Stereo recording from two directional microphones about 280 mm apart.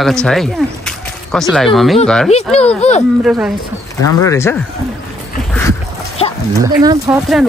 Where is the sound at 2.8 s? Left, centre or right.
Left.